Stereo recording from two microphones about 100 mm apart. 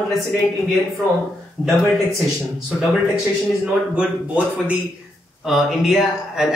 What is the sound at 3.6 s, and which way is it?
A man's voice, 10° right (ahead or behind).